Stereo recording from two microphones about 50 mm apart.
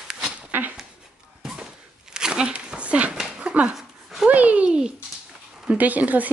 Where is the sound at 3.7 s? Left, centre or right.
Centre.